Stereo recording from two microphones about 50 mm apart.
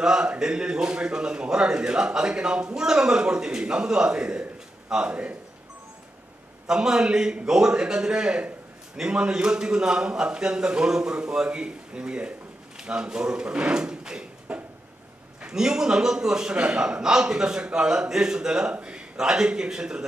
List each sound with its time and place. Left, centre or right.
0.0 s a man's voice: centre
6.7 s a man's voice: centre
14.5 s a sound: right
15.4 s a man's voice: centre